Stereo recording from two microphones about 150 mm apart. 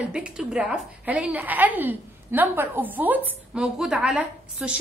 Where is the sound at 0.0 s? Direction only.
5° right (ahead or behind).